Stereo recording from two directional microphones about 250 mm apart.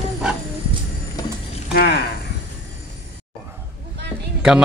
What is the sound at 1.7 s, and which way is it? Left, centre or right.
Speech, left.